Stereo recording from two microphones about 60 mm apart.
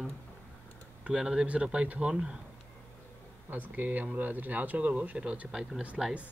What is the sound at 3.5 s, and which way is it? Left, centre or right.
Speech, right.